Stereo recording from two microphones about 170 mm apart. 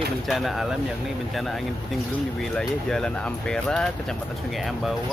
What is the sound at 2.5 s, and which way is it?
Speech, 5° left (ahead or behind).